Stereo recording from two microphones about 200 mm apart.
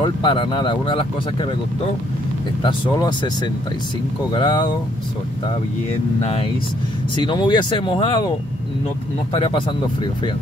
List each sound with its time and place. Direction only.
0.0 s speech: 25° left (ahead or behind)
2.6 s speech: 20° left (ahead or behind)
7.2 s speech: 25° left (ahead or behind)
9.3 s speech: 25° left (ahead or behind)